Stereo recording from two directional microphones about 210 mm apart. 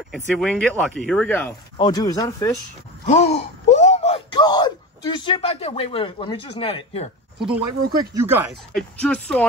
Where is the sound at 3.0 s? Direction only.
30° left (ahead or behind).